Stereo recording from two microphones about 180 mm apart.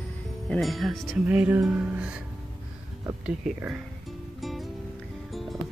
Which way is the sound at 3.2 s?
5° right (ahead or behind).